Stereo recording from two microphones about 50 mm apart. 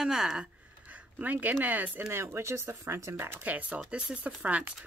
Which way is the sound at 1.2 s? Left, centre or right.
Right.